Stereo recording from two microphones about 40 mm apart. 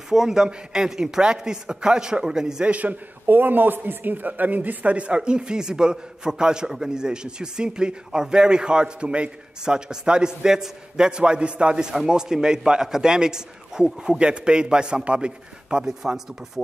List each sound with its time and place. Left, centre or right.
0.1 s a man's voice: centre
2.7 s a man's voice: right
3.3 s speech: right
4.9 s a man's voice: right
15.8 s a man's voice: centre